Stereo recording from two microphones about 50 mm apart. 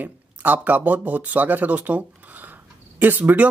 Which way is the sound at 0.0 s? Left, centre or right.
Right.